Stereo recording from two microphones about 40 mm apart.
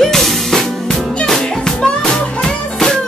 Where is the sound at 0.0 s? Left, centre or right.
Centre.